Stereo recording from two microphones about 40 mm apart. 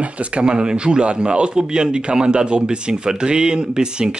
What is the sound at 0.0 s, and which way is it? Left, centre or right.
Speech, right.